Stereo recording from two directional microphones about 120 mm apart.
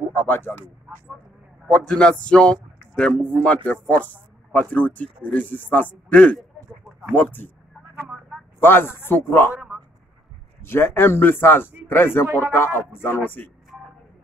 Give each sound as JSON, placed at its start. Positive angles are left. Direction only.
{"t": 0.1, "sound": "speech", "side_deg": 15}
{"t": 1.7, "sound": "a man's voice", "side_deg": 10}
{"t": 8.5, "sound": "speech", "side_deg": 20}
{"t": 10.6, "sound": "speech", "side_deg": 20}
{"t": 12.3, "sound": "a man's voice", "side_deg": -15}
{"t": 12.5, "sound": "speech", "side_deg": 20}